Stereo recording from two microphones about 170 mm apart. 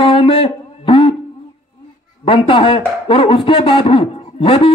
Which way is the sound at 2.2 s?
30° left (ahead or behind).